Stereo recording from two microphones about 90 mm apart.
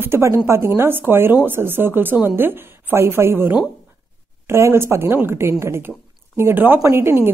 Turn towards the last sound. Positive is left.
turn(degrees=-30)  # may be behind; listen again after turning